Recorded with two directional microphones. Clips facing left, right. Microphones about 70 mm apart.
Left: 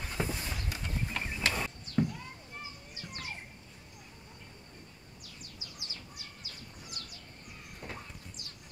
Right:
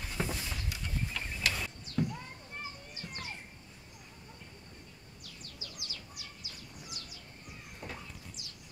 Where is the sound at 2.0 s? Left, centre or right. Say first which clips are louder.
Left 3 dB; left.